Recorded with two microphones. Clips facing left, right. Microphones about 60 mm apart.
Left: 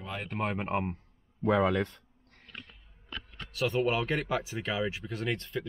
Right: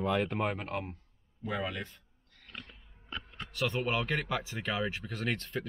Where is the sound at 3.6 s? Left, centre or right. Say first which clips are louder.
Left 4 dB; centre.